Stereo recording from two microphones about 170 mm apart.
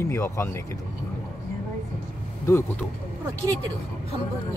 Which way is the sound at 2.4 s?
15° left (ahead or behind).